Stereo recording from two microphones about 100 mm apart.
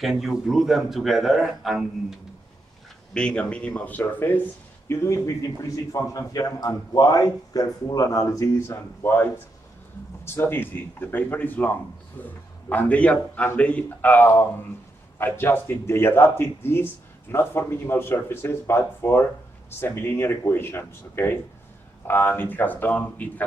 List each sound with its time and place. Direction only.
0.0 s a man's voice: 5° right (ahead or behind)
3.1 s a man's voice: 10° left (ahead or behind)